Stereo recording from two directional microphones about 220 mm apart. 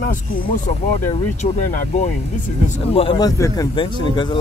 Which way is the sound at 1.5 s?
30° left (ahead or behind).